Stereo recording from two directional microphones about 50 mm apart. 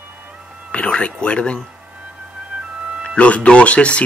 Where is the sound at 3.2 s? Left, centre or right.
Left.